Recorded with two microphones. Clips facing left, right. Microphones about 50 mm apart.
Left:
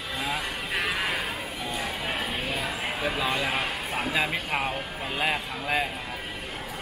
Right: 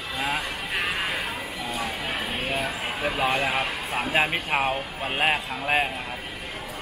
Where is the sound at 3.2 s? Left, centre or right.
Right.